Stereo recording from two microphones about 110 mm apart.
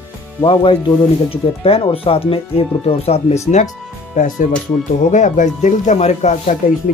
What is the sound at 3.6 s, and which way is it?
Speech, 90° left.